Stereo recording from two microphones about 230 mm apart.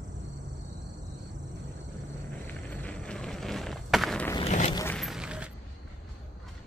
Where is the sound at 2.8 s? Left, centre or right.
Centre.